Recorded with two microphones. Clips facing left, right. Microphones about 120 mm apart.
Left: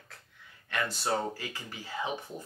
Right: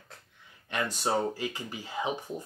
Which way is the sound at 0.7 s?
20° right (ahead or behind).